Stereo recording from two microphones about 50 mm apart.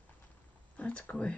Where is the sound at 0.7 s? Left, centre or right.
Left.